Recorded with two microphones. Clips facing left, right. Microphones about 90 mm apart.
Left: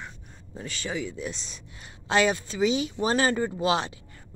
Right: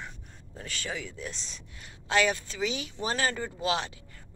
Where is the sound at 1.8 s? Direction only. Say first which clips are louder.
Left 3 dB; 25° left (ahead or behind).